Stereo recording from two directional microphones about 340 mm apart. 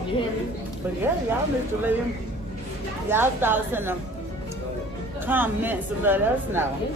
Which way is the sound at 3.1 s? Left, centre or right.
Centre.